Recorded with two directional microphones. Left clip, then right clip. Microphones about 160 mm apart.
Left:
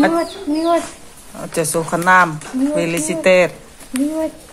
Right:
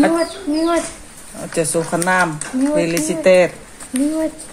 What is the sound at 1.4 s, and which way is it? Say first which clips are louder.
Speech: even; centre (ahead or behind).